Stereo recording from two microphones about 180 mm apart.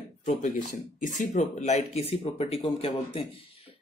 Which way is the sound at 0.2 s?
40° left (ahead or behind).